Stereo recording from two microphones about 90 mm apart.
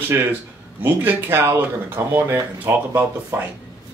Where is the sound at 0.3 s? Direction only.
20° right (ahead or behind).